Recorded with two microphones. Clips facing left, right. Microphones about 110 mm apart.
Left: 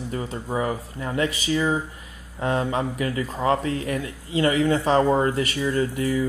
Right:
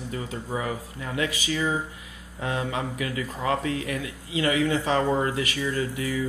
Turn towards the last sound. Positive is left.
turn(degrees=35)  # may be behind; listen again after turning